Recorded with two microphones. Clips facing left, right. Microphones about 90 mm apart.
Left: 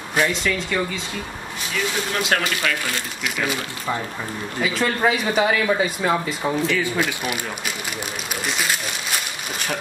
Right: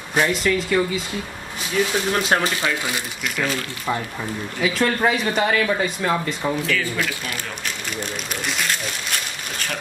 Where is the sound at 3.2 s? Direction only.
5° left (ahead or behind).